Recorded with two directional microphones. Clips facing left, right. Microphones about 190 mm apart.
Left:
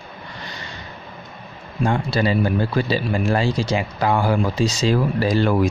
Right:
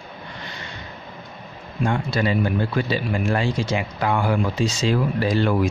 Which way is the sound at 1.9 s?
35° left (ahead or behind).